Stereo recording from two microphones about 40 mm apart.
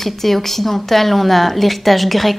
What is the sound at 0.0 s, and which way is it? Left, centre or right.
A woman's voice, centre.